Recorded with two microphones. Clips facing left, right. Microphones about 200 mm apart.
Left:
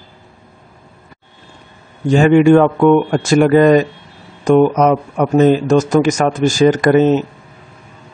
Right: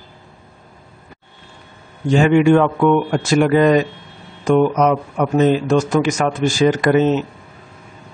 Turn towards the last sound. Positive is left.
turn(degrees=45)  # may be behind; listen again after turning